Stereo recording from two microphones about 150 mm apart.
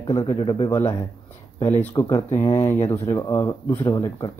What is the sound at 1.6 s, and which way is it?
Speech, 15° left (ahead or behind).